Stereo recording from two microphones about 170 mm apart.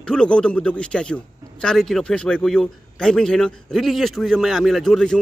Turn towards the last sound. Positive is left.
turn(degrees=5)  # may be behind; listen again after turning